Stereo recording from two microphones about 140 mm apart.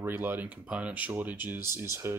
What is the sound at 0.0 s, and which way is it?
Speech, 15° right (ahead or behind).